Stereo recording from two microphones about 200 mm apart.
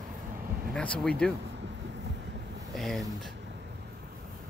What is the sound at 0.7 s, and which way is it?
Speech, 5° left (ahead or behind).